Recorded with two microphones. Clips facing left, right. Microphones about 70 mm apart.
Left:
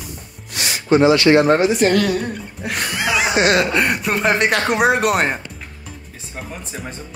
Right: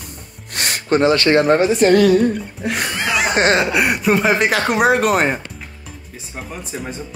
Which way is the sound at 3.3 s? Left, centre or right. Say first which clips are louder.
Right 1 dB; right.